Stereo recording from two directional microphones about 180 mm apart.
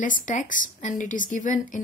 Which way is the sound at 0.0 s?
45° left (ahead or behind).